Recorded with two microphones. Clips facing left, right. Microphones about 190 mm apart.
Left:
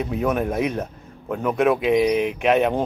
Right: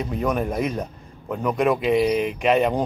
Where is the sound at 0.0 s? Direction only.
5° left (ahead or behind).